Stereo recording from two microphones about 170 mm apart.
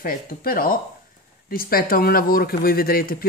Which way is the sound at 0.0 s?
60° left (ahead or behind).